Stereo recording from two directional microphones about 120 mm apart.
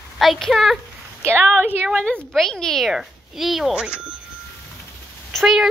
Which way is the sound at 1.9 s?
5° left (ahead or behind).